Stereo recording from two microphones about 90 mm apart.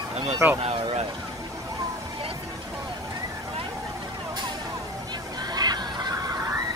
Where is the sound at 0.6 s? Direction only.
85° right.